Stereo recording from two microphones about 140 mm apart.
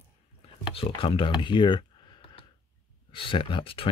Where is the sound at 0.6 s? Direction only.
40° left (ahead or behind).